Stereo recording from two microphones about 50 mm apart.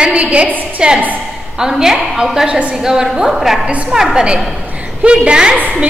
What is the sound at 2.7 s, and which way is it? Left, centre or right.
Speech, centre.